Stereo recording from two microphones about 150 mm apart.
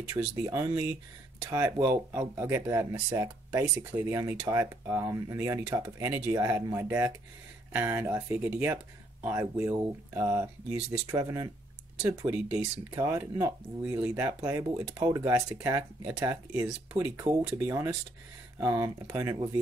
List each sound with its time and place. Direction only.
0.4 s speech: 20° right (ahead or behind)